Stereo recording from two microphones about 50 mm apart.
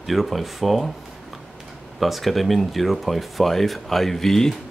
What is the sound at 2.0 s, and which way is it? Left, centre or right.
Speech, centre.